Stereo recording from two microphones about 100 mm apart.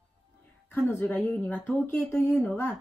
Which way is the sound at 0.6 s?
20° left (ahead or behind).